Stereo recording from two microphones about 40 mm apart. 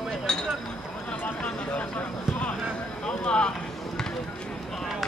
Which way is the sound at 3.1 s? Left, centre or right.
Left.